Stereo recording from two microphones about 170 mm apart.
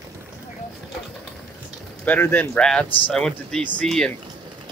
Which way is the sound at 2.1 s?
10° left (ahead or behind).